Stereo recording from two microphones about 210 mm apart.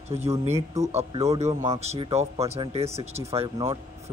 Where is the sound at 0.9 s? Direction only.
30° right (ahead or behind).